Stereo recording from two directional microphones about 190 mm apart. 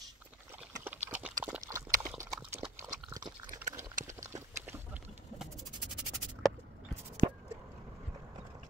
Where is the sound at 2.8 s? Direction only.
20° right (ahead or behind).